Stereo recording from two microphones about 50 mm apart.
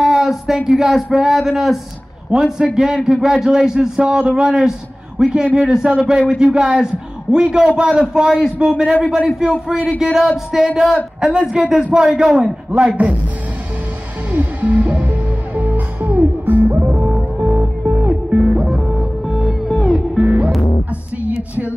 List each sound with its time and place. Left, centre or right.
0.0 s speech: centre
2.7 s a man's voice: centre; by 13.1 s right
14.3 s music: right
17.8 s music: right
18.4 s music: centre
20.2 s music: right